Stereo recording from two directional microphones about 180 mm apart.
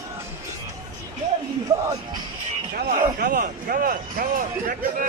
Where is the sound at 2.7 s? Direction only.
50° right (ahead or behind).